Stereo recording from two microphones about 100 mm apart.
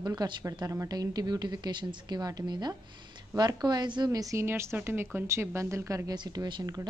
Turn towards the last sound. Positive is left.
turn(degrees=-45)  # may be behind; listen again after turning